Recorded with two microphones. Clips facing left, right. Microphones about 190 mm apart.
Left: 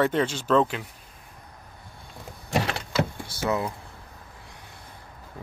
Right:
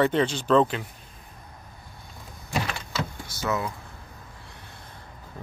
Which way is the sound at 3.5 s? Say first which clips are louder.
Left 2 dB; 30° left (ahead or behind).